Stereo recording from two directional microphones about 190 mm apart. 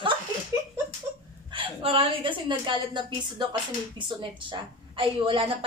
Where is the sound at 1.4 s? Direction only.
30° right (ahead or behind).